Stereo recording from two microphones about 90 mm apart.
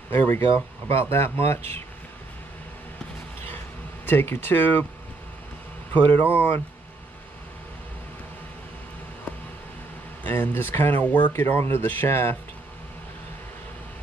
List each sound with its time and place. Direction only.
0.1 s speech: 30° left (ahead or behind)
4.0 s speech: 25° left (ahead or behind)
5.9 s speech: 20° left (ahead or behind)
10.2 s speech: 20° left (ahead or behind)